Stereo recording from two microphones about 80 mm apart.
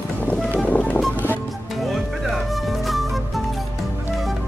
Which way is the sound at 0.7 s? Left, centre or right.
Centre.